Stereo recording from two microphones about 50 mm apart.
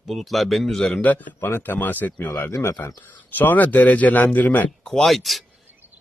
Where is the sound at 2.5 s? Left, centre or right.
Left.